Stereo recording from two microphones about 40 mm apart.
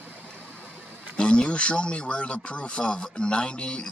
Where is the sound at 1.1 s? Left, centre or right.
Left.